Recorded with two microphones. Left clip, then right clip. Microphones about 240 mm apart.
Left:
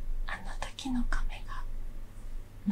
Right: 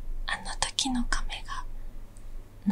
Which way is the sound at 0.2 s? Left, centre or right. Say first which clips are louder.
Right 8 dB; right.